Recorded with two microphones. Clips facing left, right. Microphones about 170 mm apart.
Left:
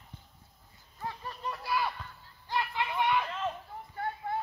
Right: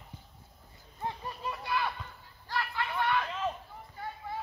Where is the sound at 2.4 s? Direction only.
20° left (ahead or behind).